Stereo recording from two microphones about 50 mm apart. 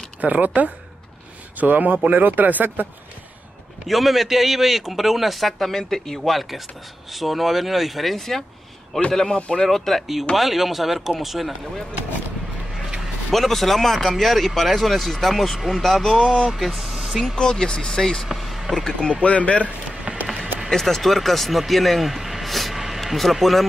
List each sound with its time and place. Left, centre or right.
0.2 s speech: right
1.6 s speech: right
3.8 s speech: centre
12.7 s a sound: centre
13.3 s speech: centre
17.4 s speech: centre
18.3 s a sound: centre
18.9 s speech: centre
20.1 s run: centre
20.7 s speech: centre